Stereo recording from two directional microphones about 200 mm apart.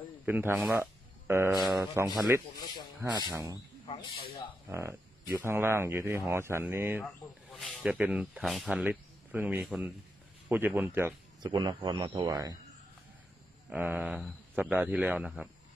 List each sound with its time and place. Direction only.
0.2 s speech: 10° right (ahead or behind)
3.8 s owl: 25° left (ahead or behind)
4.6 s a man's voice: 10° right (ahead or behind)
11.5 s speech: 20° right (ahead or behind)
13.7 s speech: 10° right (ahead or behind)